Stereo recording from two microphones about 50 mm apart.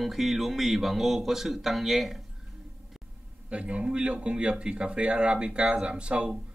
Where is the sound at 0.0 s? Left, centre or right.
Centre.